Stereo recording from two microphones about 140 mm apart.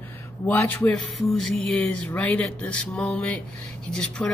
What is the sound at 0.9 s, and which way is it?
Speech, 5° left (ahead or behind).